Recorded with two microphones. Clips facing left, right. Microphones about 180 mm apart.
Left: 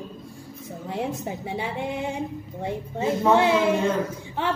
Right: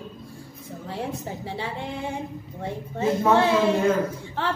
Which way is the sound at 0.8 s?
20° left (ahead or behind).